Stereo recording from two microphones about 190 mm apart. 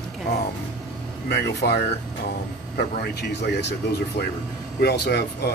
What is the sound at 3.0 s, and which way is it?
Speech, 60° left (ahead or behind).